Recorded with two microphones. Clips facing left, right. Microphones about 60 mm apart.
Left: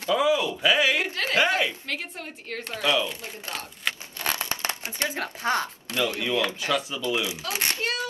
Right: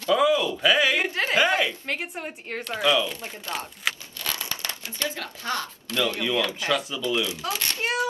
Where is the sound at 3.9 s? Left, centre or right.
Centre.